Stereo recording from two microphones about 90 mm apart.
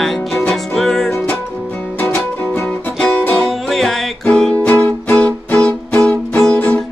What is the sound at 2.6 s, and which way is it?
Music, 5° left (ahead or behind).